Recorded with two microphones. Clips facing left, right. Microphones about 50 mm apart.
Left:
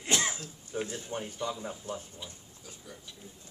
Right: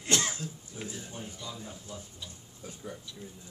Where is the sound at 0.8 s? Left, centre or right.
Left.